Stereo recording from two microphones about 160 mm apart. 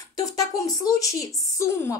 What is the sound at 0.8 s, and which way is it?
Speech, 20° left (ahead or behind).